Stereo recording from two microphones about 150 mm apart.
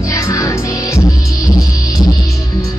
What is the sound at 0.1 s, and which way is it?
Music, 20° left (ahead or behind).